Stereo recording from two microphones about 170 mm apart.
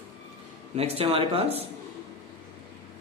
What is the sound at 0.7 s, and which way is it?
Speech, 35° right (ahead or behind).